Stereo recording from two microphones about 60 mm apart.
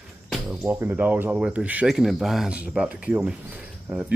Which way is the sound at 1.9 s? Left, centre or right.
Centre.